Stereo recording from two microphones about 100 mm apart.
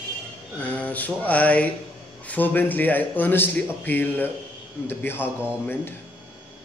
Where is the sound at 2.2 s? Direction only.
15° left (ahead or behind).